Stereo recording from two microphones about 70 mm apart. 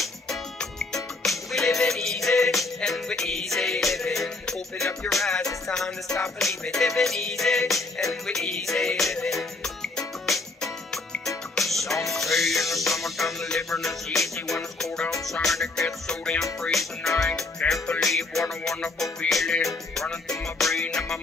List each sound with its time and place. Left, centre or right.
0.0 s music: centre
18.0 s music: centre